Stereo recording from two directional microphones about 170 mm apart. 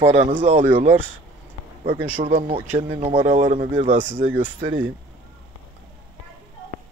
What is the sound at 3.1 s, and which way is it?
Speech, 45° right (ahead or behind).